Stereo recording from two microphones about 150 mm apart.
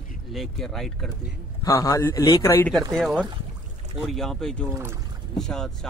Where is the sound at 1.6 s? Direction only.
25° left (ahead or behind).